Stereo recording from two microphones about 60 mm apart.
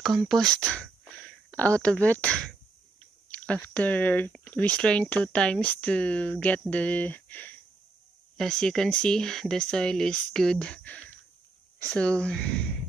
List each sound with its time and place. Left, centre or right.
0.3 s speech: centre
1.5 s speech: left
8.4 s speech: centre; by 11.1 s left
11.8 s speech: centre